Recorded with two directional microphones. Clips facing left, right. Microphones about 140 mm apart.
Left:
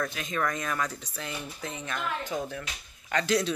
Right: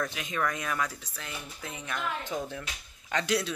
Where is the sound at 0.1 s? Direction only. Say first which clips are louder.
Left 1 dB; 10° right (ahead or behind).